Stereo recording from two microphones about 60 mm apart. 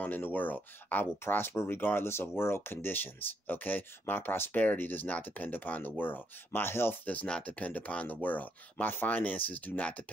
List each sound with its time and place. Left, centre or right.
0.0 s speech: left
7.2 s speech: centre